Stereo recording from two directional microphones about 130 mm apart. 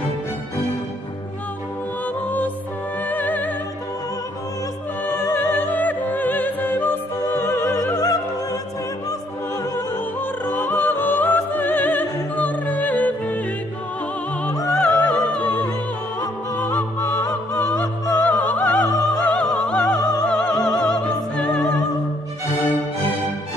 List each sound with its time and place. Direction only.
3.1 s music: 15° left (ahead or behind)
5.0 s music: 15° left (ahead or behind)
7.9 s opera: 30° left (ahead or behind)
10.4 s music: 15° left (ahead or behind)
14.8 s music: 10° left (ahead or behind)